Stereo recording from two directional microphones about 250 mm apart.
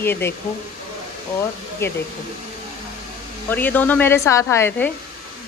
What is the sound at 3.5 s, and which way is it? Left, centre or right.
Speech, centre.